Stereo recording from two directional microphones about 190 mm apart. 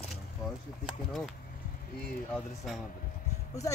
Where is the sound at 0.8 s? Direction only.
Centre (ahead or behind).